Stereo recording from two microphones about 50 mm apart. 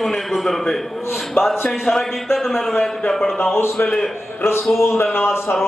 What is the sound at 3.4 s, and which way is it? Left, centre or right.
Speech, left.